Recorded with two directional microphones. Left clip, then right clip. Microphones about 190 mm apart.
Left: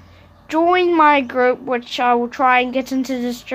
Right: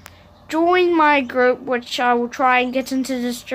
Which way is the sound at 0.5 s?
Centre (ahead or behind).